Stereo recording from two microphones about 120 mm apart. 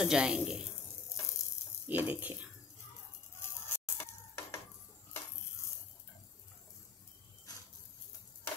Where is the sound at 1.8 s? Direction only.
15° right (ahead or behind).